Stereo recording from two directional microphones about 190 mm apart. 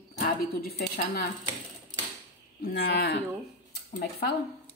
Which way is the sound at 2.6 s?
55° left (ahead or behind).